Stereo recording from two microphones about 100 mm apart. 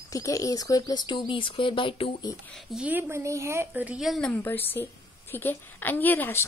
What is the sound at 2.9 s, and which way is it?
Speech, 20° right (ahead or behind).